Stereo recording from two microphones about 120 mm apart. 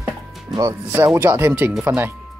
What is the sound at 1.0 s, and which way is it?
Speech, 20° right (ahead or behind).